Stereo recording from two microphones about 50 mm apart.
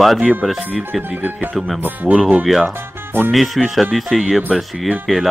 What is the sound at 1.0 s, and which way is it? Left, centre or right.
Speech, right.